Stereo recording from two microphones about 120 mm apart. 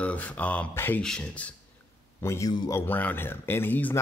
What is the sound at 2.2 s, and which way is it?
Speech, 20° left (ahead or behind).